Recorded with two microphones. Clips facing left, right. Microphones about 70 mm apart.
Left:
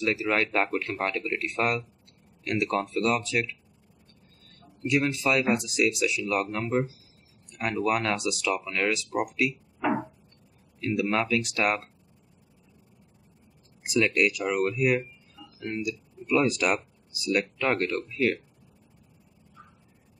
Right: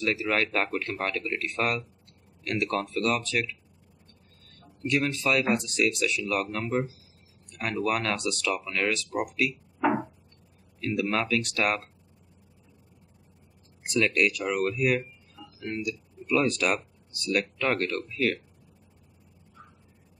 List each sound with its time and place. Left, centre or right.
0.0 s speech: centre
4.8 s speech: centre
9.8 s a sound: centre
10.8 s speech: centre
13.8 s speech: centre